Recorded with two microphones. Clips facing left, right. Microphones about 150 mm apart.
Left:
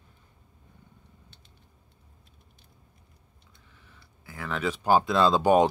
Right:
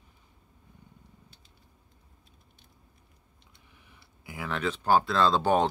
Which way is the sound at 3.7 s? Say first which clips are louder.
Left 1 dB; 15° right (ahead or behind).